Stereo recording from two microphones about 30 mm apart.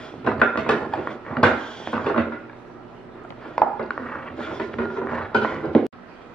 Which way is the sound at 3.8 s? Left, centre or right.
Left.